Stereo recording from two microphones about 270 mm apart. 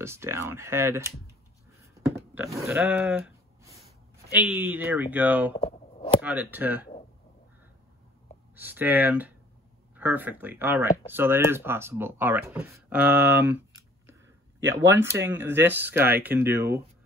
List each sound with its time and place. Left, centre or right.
0.0 s speech: centre
2.1 s a sound: centre
4.3 s speech: centre
5.6 s a sound: left
6.2 s speech: centre
8.5 s speech: centre
14.7 s speech: centre